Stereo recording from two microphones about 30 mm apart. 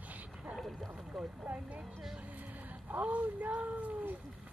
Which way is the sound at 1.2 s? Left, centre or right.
Centre.